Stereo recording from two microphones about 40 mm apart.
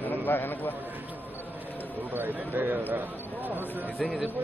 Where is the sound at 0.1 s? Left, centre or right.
Left.